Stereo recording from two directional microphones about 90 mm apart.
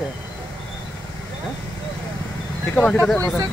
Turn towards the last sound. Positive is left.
turn(degrees=20)  # may be behind; listen again after turning